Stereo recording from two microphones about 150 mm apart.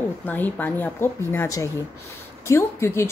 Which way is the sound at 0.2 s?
10° left (ahead or behind).